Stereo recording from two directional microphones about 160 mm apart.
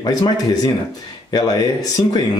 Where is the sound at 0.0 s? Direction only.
25° left (ahead or behind).